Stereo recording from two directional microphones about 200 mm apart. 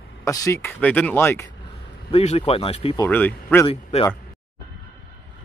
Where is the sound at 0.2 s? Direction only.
15° left (ahead or behind).